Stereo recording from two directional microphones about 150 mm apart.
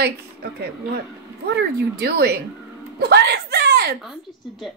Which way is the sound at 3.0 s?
90° right.